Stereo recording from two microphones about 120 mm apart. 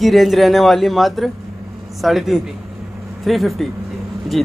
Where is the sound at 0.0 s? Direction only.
Centre (ahead or behind).